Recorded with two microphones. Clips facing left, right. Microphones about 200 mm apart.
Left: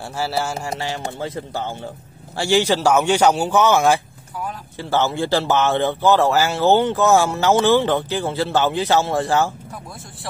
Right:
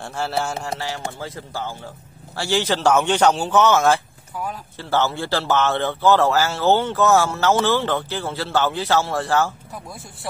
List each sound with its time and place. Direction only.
0.1 s speech: 5° left (ahead or behind)
0.7 s a man's voice: 20° left (ahead or behind)